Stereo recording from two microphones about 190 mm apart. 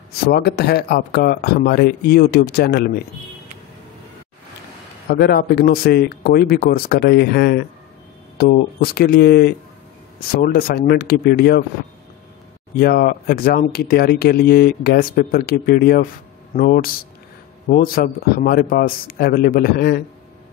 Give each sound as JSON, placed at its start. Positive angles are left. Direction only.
{"t": 0.2, "sound": "speech", "side_deg": 55}
{"t": 5.1, "sound": "speech", "side_deg": 55}
{"t": 12.7, "sound": "speech", "side_deg": 50}